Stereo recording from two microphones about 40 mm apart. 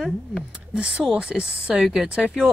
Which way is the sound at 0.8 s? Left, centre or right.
Right.